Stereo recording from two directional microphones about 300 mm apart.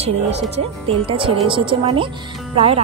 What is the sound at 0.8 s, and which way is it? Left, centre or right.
Speech, centre.